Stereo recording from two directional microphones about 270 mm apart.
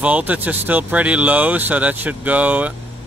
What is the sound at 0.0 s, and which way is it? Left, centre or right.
Speech, centre.